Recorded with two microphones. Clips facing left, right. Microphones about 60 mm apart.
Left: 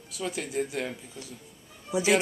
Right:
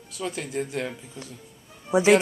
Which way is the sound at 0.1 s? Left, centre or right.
Centre.